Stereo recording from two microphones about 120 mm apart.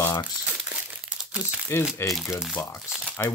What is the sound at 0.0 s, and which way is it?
Crumpling, 20° left (ahead or behind).